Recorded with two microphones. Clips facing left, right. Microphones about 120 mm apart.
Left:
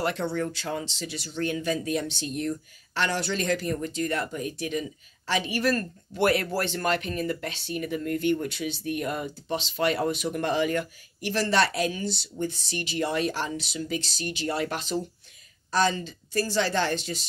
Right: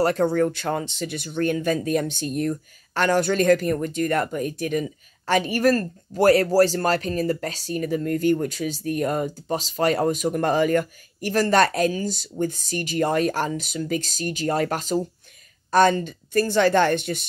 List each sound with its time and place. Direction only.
0.0 s speech: 45° right (ahead or behind)
15.7 s speech: 55° right (ahead or behind)